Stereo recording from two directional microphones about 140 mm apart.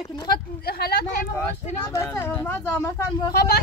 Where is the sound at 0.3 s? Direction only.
90° left.